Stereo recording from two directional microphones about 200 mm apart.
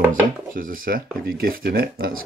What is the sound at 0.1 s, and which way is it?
Speech, 45° right (ahead or behind).